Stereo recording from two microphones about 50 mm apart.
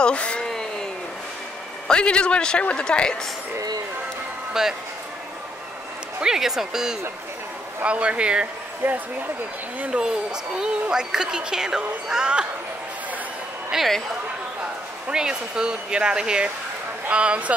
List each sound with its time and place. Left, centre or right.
0.0 s a sound: left
0.5 s a sound: centre
1.9 s a man's voice: centre
4.6 s a woman's voice: centre
6.2 s a woman's voice: centre
7.8 s speech: right
8.8 s speech: right
10.0 s a woman's voice: centre
13.7 s a woman's voice: centre
15.0 s a woman's voice: centre